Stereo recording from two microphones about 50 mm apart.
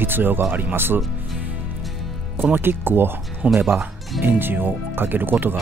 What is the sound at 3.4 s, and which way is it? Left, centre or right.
Speech, right.